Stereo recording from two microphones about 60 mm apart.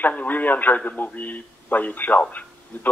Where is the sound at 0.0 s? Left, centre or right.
Left.